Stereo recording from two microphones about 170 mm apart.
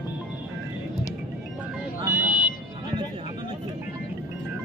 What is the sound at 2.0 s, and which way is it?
Vehicle, 10° right (ahead or behind).